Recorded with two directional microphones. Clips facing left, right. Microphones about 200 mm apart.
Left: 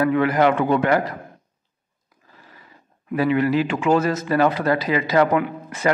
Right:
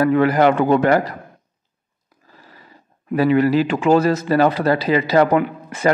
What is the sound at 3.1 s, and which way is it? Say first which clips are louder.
Speech: right 4 dB; 35° right (ahead or behind).